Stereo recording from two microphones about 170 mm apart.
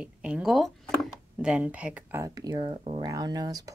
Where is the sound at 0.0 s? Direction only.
5° right (ahead or behind).